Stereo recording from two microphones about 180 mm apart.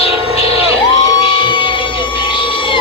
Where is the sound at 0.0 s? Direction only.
35° left (ahead or behind).